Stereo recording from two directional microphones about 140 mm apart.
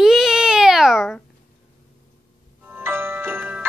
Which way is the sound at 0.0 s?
5° right (ahead or behind).